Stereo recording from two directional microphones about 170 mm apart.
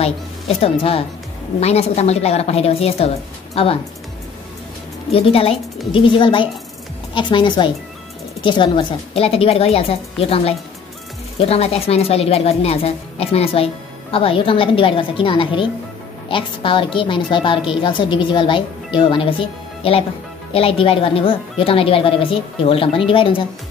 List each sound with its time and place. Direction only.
0.0 s speech: 35° left (ahead or behind)
5.1 s a woman's voice: 35° left (ahead or behind)